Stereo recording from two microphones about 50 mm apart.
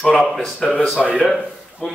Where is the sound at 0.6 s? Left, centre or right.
Centre.